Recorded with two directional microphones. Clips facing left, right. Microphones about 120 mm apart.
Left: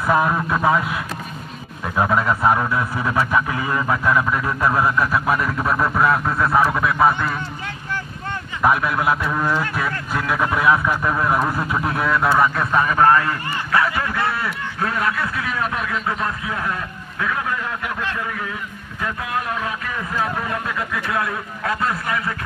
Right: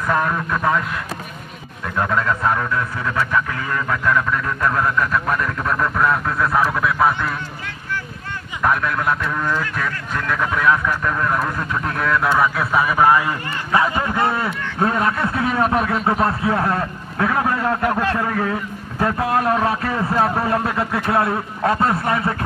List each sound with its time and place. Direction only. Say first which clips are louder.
0.0 s speech: left 2 dB; 10° left (ahead or behind)
2.0 s speech: left 1 dB; 15° left (ahead or behind)
8.6 s speech: left 1 dB; 5° left (ahead or behind); by 22.3 s 30° right (ahead or behind)